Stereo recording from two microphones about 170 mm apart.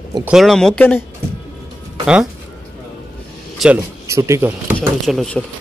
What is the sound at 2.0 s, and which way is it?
Speech, 5° right (ahead or behind).